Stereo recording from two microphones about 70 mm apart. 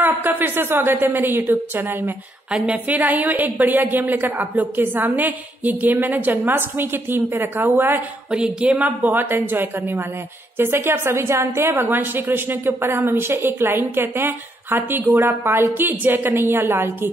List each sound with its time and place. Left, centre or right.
0.0 s a woman's voice: right
2.5 s a woman's voice: centre
8.3 s a woman's voice: centre; by 11.7 s right
11.7 s a woman's voice: right